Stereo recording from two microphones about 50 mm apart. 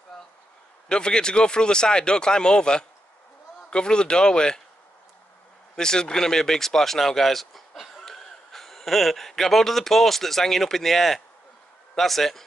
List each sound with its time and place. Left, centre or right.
0.8 s speech: centre
5.8 s speech: centre